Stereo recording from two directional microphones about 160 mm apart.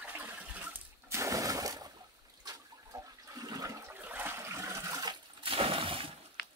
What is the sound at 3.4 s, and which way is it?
Toilet flush, 25° right (ahead or behind).